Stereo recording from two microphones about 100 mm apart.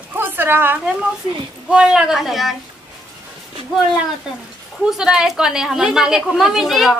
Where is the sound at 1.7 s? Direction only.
10° right (ahead or behind).